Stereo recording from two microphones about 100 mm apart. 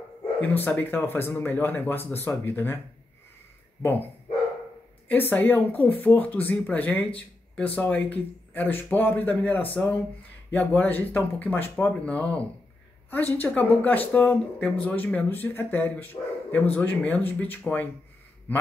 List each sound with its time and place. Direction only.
0.4 s speech: 20° left (ahead or behind)
5.0 s a man's voice: 20° left (ahead or behind)